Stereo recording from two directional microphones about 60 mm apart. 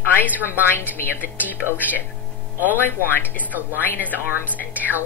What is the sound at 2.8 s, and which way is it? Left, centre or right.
A woman's voice, left.